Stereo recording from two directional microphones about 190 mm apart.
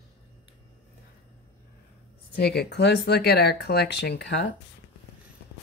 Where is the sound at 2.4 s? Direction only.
60° left (ahead or behind).